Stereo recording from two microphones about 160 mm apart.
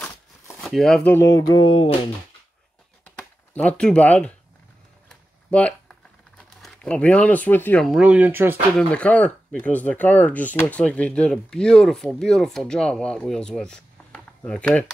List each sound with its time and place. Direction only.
0.6 s speech: centre (ahead or behind)
1.1 s music: 20° left (ahead or behind)
3.5 s speech: 5° left (ahead or behind)
5.5 s a sound: 10° left (ahead or behind)
7.8 s speech: 5° right (ahead or behind)
8.7 s speech: 10° left (ahead or behind)